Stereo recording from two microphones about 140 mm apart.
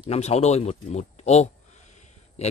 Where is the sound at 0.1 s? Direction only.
50° left (ahead or behind).